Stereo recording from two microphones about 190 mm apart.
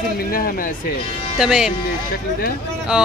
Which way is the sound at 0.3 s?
50° left (ahead or behind).